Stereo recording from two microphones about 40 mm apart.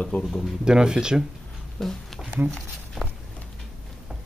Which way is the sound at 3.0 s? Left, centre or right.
Centre.